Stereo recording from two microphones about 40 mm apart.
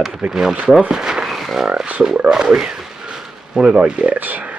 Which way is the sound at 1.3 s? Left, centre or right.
Centre.